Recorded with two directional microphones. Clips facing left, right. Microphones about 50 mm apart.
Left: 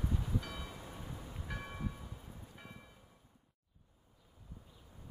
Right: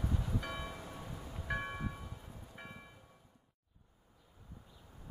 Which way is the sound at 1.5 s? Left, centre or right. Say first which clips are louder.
Right 5 dB; right.